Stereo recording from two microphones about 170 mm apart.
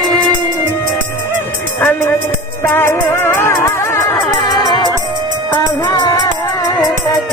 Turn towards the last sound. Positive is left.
turn(degrees=25)  # may be behind; listen again after turning